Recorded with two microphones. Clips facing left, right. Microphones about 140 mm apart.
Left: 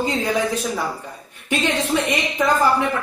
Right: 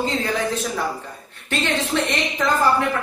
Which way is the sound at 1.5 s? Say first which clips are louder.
Left 2 dB; 15° left (ahead or behind).